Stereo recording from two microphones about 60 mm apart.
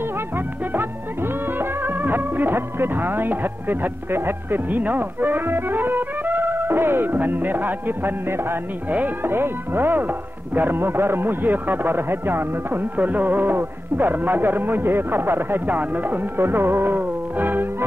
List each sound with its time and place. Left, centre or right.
0.7 s music: right
8.9 s speech: right
12.9 s speech: right